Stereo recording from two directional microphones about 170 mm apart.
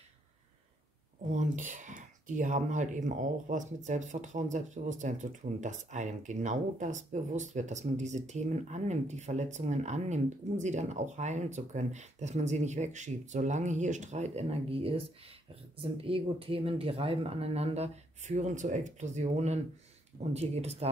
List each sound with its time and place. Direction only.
1.3 s speech: 45° right (ahead or behind)
16.0 s speech: 35° right (ahead or behind)